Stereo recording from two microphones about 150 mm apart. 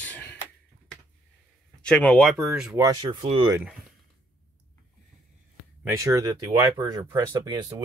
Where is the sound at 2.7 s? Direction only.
25° right (ahead or behind).